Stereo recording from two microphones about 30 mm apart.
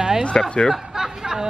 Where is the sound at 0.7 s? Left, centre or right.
Centre.